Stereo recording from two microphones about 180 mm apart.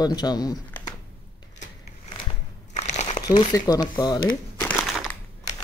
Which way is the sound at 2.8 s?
40° left (ahead or behind).